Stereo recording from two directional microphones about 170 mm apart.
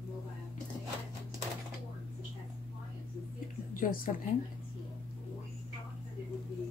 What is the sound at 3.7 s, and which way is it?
Speech, 55° left (ahead or behind).